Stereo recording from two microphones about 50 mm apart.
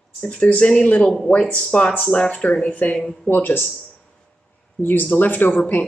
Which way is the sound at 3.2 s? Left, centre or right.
Left.